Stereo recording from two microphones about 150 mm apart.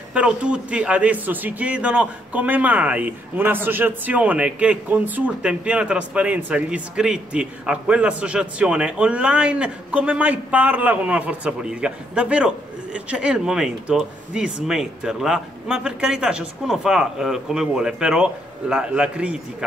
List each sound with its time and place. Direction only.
0.1 s speech: 5° right (ahead or behind)